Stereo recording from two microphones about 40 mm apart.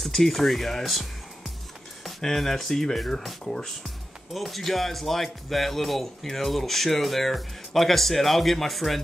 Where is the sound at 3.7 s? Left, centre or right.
Centre.